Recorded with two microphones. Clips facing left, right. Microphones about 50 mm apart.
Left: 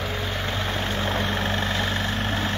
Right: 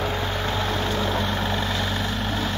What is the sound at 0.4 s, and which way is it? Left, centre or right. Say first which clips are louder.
Vehicle: right 2 dB; centre.